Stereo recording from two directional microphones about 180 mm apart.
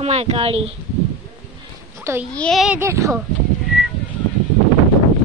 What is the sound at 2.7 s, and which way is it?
Speech, 15° right (ahead or behind).